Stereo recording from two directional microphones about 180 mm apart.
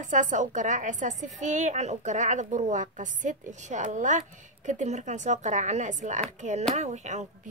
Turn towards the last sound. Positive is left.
turn(degrees=-40)  # may be behind; listen again after turning